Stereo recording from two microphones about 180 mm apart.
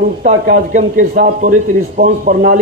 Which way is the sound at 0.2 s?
45° right (ahead or behind).